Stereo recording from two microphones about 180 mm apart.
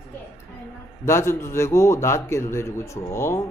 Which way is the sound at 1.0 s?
15° left (ahead or behind).